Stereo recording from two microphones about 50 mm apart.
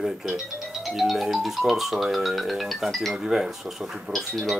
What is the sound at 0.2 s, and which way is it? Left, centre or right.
Speech, centre.